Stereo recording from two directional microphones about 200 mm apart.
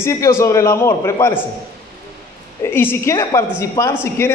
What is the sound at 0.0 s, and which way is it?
A woman's voice, 15° left (ahead or behind).